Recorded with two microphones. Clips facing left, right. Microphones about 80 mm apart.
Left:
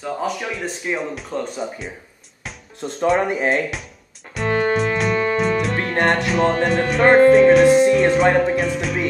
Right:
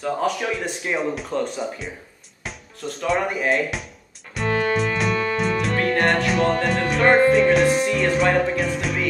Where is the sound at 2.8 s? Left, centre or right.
Left.